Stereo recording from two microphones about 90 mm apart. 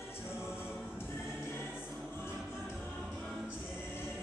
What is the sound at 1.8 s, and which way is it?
Music, 25° left (ahead or behind).